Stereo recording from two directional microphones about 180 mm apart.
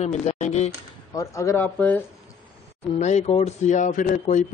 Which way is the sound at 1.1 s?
20° left (ahead or behind).